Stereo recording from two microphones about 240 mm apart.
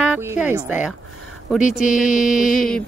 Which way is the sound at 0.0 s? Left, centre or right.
Centre.